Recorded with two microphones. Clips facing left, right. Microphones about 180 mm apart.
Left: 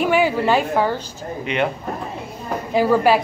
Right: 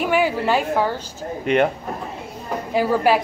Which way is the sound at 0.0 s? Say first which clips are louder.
Left 2 dB; 10° right (ahead or behind).